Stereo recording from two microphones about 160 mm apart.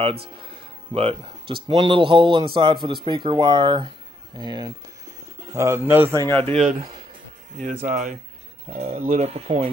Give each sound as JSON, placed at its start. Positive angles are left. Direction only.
{"t": 0.0, "sound": "speech", "side_deg": -35}
{"t": 5.5, "sound": "speech", "side_deg": -15}
{"t": 6.2, "sound": "speech", "side_deg": 15}
{"t": 6.5, "sound": "speech", "side_deg": 0}
{"t": 7.8, "sound": "speech", "side_deg": -50}
{"t": 8.6, "sound": "speech", "side_deg": -40}